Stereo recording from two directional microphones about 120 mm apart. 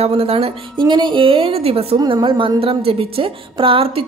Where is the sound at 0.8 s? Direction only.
40° right (ahead or behind); by 2.0 s 55° right (ahead or behind).